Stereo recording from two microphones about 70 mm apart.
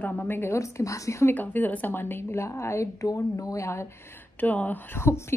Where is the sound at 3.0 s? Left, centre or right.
Left.